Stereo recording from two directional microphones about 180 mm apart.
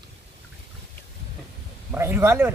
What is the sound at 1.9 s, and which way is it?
Speech, 15° right (ahead or behind).